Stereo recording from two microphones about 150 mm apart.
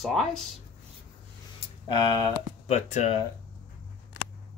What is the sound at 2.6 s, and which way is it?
Speech, 45° left (ahead or behind).